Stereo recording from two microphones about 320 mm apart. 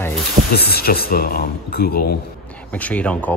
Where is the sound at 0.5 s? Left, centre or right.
Left.